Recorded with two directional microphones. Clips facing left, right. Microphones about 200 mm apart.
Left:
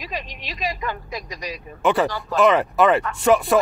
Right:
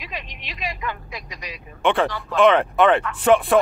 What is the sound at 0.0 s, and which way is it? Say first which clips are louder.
Speech: left 3 dB; 40° left (ahead or behind).